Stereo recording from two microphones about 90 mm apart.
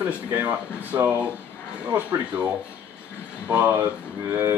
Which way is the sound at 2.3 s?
15° right (ahead or behind).